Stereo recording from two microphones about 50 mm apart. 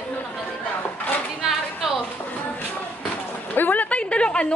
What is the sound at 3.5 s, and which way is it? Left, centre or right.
Speech, left.